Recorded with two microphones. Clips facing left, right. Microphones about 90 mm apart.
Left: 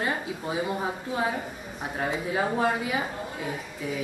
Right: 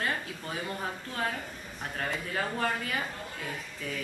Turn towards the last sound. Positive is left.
turn(degrees=10)  # may be behind; listen again after turning